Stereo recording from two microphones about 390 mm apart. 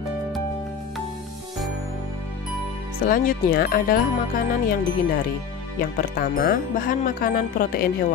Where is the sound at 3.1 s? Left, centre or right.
Left.